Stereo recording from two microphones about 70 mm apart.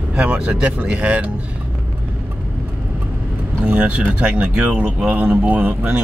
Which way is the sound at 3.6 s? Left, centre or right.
Centre.